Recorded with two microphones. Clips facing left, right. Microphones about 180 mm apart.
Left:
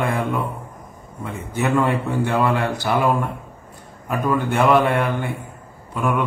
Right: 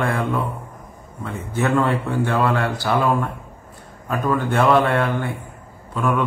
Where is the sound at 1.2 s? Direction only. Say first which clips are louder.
Right 1 dB; 15° left (ahead or behind).